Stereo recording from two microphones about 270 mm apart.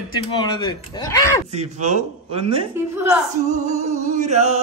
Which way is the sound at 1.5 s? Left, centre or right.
Right.